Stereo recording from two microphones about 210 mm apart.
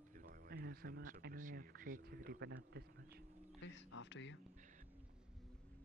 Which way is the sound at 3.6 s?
60° left (ahead or behind).